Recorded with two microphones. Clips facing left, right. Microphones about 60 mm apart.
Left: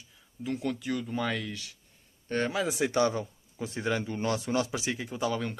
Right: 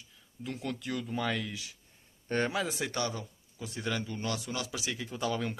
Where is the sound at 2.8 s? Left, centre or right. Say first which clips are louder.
Left 8 dB; left.